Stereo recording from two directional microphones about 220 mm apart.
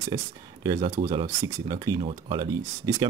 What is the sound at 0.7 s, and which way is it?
Speech, 15° right (ahead or behind).